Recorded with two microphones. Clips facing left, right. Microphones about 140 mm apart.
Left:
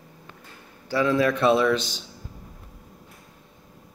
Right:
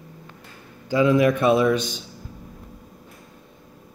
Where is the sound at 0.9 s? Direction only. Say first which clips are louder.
Right 4 dB; 15° right (ahead or behind).